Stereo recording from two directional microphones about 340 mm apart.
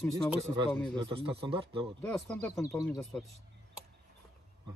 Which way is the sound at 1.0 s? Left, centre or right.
Centre.